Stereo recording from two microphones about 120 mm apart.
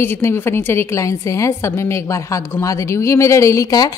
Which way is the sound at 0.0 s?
20° left (ahead or behind).